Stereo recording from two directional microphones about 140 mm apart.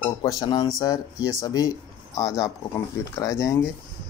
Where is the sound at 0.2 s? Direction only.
25° left (ahead or behind).